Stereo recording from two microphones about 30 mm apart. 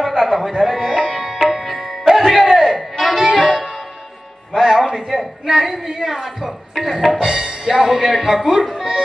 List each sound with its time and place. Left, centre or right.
0.2 s tabla: centre
1.1 s music: centre
3.4 s music: right
4.6 s a sound: centre
7.8 s speech: centre